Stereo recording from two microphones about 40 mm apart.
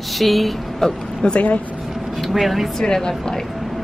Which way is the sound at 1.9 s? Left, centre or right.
Centre.